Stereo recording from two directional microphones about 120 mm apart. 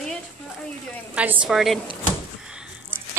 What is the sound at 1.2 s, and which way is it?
Speech, 10° right (ahead or behind).